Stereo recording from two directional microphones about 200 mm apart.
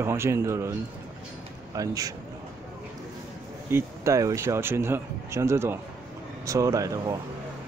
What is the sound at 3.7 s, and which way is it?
Speech, 15° right (ahead or behind).